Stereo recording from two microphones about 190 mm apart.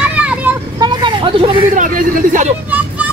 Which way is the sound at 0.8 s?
25° right (ahead or behind).